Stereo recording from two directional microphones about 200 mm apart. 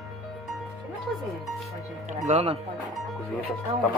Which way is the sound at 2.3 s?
35° right (ahead or behind).